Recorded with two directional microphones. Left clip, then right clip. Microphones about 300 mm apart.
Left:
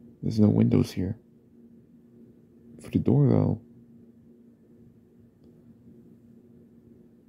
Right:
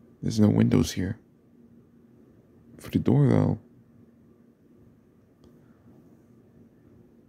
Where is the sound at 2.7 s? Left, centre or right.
Centre.